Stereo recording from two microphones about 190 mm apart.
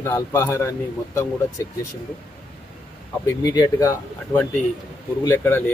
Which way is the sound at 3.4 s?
20° left (ahead or behind).